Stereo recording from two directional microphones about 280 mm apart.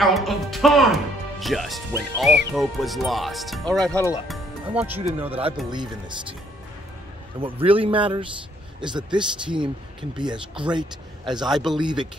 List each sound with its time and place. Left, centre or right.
0.0 s speech: centre
4.3 s music: centre
5.7 s speech: centre
7.3 s a man's voice: centre
11.3 s a man's voice: centre
11.8 s speech: centre